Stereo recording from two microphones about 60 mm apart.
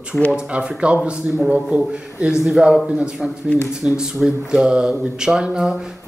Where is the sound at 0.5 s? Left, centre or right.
Centre.